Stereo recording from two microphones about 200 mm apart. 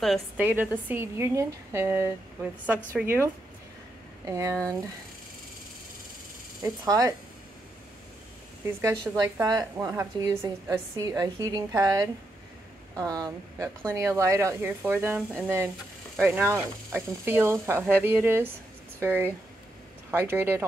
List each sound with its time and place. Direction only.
0.0 s a woman's voice: centre (ahead or behind)
4.3 s speech: 15° right (ahead or behind)
6.8 s speech: 15° right (ahead or behind)
9.1 s a woman's voice: 5° right (ahead or behind)
9.4 s speech: 15° right (ahead or behind)